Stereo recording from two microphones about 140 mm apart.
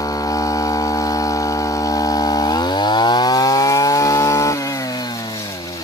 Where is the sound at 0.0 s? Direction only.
25° left (ahead or behind).